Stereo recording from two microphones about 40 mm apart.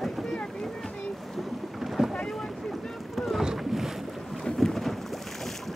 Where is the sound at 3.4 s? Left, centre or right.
Centre.